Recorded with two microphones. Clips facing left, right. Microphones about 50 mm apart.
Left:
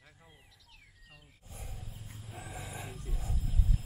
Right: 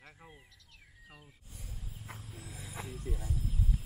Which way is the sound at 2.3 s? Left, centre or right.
Centre.